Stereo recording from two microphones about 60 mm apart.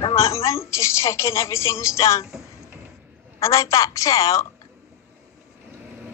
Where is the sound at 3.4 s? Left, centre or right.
Left.